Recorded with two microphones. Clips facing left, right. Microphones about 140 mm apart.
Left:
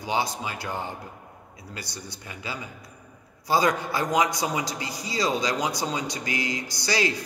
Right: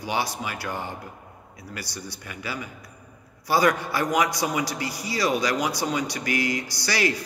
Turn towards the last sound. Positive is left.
turn(degrees=20)  # may be behind; listen again after turning